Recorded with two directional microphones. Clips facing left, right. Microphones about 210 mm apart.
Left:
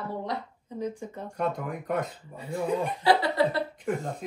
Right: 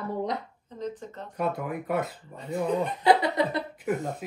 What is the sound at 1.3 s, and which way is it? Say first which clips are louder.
Speech: right 1 dB; 5° right (ahead or behind).